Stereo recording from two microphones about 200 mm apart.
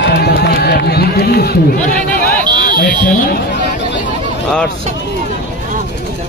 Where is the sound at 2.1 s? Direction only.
45° left (ahead or behind).